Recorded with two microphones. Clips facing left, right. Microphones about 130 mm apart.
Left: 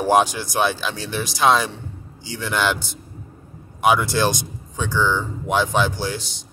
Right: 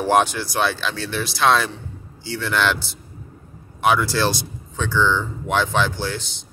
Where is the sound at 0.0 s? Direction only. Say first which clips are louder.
Left 1 dB; 10° left (ahead or behind).